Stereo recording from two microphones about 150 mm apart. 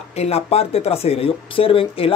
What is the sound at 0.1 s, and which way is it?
Speech, 45° left (ahead or behind).